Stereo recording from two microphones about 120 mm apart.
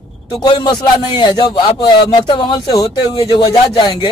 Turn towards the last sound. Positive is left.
turn(degrees=45)  # may be behind; listen again after turning